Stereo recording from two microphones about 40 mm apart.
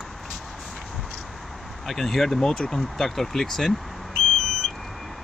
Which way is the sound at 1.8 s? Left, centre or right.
Centre.